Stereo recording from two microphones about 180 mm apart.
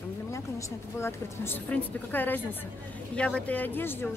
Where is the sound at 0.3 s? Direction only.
15° left (ahead or behind).